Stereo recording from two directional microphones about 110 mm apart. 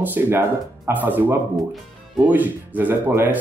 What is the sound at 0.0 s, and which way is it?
A man's voice, 20° right (ahead or behind).